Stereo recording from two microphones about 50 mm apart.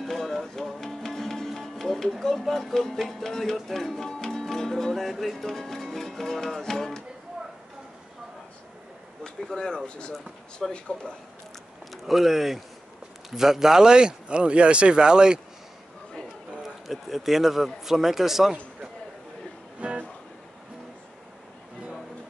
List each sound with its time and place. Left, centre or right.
0.0 s music: centre
3.5 s speech: centre
4.1 s music: centre
9.2 s speech: centre
11.9 s speech: centre
16.6 s speech: centre
19.8 s music: right